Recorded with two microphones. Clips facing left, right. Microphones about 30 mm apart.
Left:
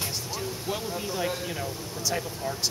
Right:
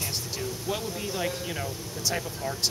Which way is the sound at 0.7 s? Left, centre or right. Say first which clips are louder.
Left 1 dB; centre.